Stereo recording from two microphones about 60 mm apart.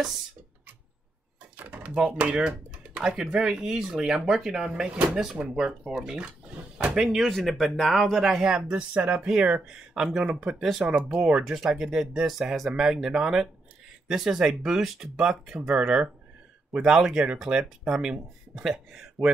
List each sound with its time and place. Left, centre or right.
1.6 s a sound: right
2.0 s speech: centre
7.0 s speech: centre